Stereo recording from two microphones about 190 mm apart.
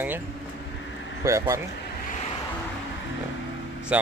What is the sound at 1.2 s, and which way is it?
Speech, 15° right (ahead or behind).